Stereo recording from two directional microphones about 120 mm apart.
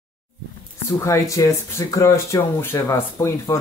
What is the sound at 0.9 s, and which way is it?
Speech, 25° left (ahead or behind).